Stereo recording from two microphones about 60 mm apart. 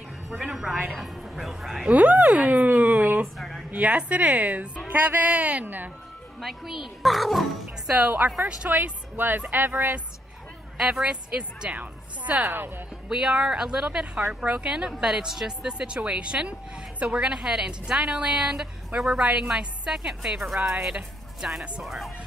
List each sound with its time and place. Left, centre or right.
0.3 s speech: centre
1.9 s speech: right
3.3 s a sound: centre
3.7 s speech: right
6.4 s speech: centre
8.2 s speech: right
10.8 s a woman's voice: centre
12.4 s speech: right
13.1 s a woman's voice: centre
20.5 s speech: right
20.8 s speech: centre
21.8 s speech: centre